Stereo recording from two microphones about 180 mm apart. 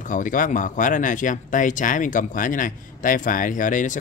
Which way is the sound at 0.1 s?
45° left (ahead or behind).